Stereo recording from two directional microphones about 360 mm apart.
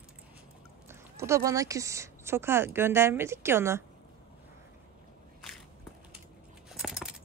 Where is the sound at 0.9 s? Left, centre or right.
Centre.